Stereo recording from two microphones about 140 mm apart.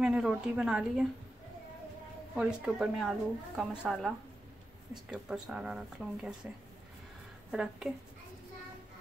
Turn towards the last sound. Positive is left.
turn(degrees=-5)  # may be behind; listen again after turning